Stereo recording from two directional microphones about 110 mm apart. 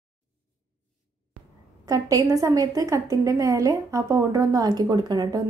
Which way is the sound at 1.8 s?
30° right (ahead or behind).